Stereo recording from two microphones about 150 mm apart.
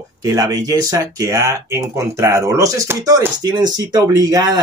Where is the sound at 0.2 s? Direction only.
20° right (ahead or behind).